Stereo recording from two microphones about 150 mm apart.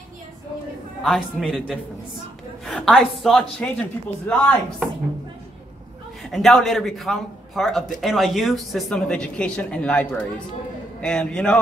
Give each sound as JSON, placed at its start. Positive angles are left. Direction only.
{"t": 1.0, "sound": "a man's voice", "side_deg": 0}
{"t": 2.6, "sound": "a man's voice", "side_deg": 0}
{"t": 6.2, "sound": "a man's voice", "side_deg": 0}